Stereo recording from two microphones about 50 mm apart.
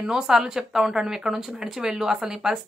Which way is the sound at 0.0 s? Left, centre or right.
Centre.